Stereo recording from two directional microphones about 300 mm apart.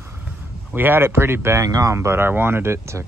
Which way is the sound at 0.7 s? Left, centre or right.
Centre.